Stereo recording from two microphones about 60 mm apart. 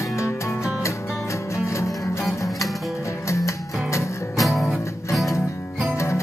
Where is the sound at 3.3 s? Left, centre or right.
Left.